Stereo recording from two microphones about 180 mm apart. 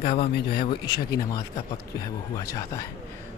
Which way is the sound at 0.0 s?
30° left (ahead or behind).